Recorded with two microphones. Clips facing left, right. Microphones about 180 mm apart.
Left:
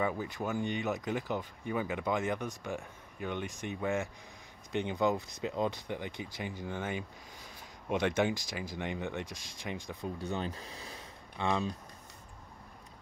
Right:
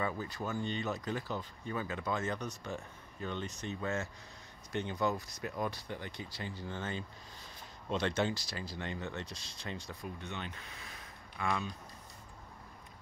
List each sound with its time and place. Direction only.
0.0 s speech: 15° left (ahead or behind)
10.0 s speech: 35° left (ahead or behind)